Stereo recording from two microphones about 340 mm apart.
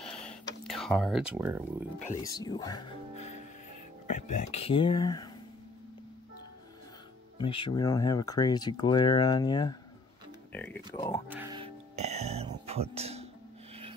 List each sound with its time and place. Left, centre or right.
0.0 s a sound: centre
2.0 s speech: centre
7.3 s speech: centre
11.2 s music: centre